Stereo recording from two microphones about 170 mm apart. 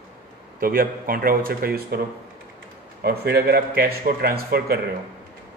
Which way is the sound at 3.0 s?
65° right (ahead or behind).